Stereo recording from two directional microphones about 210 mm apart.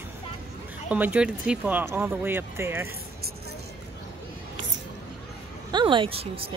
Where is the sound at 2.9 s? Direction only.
45° right (ahead or behind).